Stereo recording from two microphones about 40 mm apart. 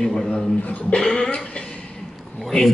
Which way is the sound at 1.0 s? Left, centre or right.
Centre.